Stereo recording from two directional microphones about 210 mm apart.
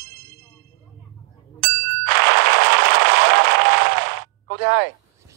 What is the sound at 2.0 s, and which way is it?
Applause, 50° right (ahead or behind).